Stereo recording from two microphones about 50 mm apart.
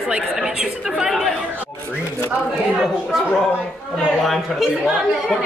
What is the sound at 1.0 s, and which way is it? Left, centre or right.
Speech, centre.